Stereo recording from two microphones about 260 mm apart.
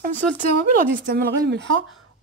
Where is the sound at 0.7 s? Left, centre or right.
Right.